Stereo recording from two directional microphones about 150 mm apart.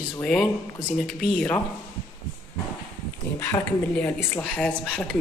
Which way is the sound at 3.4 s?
15° left (ahead or behind).